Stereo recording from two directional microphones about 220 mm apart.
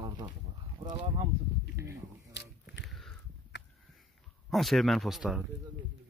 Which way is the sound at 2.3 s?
50° left (ahead or behind).